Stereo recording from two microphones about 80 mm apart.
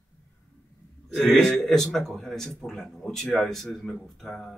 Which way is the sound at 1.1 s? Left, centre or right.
Centre.